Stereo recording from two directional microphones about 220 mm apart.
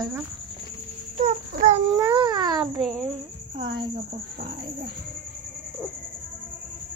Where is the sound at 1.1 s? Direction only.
30° right (ahead or behind).